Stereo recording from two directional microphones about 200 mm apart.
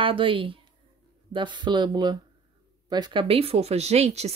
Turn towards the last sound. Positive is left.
turn(degrees=-30)  # may be behind; listen again after turning